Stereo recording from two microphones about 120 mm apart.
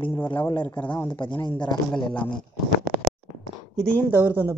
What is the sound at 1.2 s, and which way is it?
Speech, 40° left (ahead or behind).